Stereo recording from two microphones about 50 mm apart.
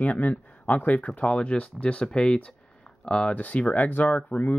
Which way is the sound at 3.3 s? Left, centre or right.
Left.